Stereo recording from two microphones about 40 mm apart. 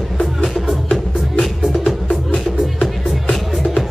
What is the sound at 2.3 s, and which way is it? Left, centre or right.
Music, centre.